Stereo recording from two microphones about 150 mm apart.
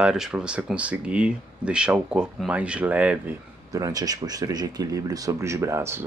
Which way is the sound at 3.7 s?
25° right (ahead or behind).